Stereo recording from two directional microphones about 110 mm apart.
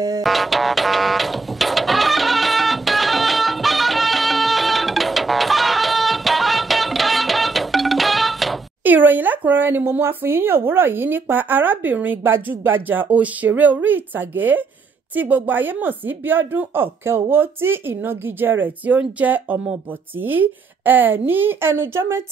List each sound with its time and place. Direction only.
0.2 s music: centre (ahead or behind)
8.8 s speech: 15° right (ahead or behind)